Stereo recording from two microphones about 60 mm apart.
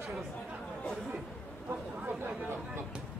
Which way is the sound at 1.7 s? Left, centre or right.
Right.